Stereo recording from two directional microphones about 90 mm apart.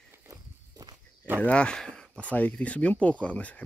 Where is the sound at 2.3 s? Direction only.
15° left (ahead or behind).